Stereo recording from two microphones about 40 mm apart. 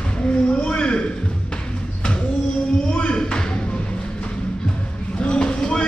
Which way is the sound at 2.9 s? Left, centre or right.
Left.